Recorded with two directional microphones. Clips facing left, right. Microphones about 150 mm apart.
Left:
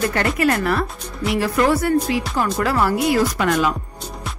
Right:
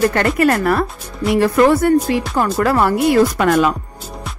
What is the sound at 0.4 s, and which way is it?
Speech, 50° right (ahead or behind).